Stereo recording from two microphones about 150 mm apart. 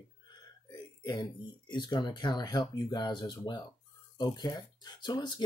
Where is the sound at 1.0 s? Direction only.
30° left (ahead or behind).